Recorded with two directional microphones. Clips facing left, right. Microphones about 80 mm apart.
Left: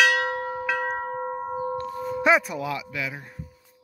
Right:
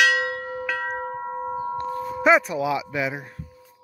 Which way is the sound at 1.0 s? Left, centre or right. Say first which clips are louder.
Even; centre.